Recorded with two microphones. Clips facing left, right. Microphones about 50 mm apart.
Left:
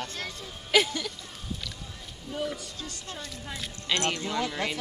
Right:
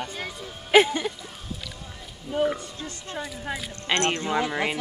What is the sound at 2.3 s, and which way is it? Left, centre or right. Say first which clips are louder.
Speech: right 8 dB; right.